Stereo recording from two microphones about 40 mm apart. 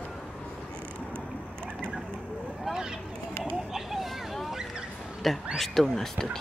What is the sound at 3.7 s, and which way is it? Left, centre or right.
Vehicle, centre.